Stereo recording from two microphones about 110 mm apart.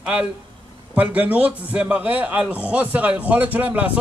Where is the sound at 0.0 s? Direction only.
10° right (ahead or behind).